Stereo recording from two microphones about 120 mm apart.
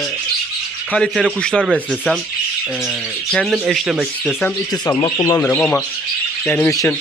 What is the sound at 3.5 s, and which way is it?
Speech, 5° right (ahead or behind).